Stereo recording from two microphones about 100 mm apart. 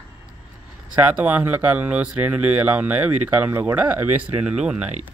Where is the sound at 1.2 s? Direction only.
15° right (ahead or behind).